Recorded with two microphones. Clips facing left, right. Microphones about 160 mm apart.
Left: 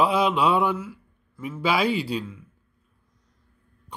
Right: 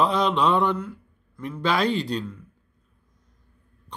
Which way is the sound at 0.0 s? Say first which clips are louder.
Even; 5° left (ahead or behind).